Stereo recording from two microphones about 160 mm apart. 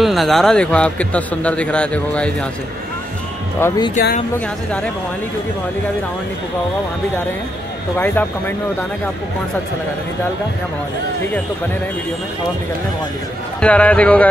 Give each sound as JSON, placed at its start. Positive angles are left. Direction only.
{"t": 0.0, "sound": "a man's voice", "side_deg": 0}
{"t": 3.5, "sound": "a man's voice", "side_deg": 15}
{"t": 8.0, "sound": "a man's voice", "side_deg": 10}
{"t": 13.6, "sound": "a man's voice", "side_deg": 10}